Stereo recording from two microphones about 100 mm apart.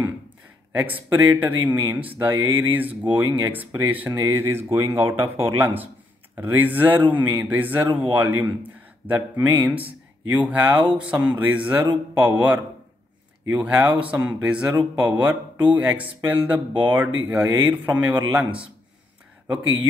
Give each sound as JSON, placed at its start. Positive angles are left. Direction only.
{"t": 0.7, "sound": "speech", "side_deg": -20}